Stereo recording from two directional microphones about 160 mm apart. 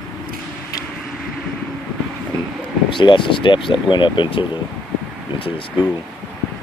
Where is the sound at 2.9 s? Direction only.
30° left (ahead or behind).